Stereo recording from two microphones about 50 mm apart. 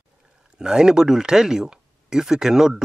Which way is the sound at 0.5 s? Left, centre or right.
Centre.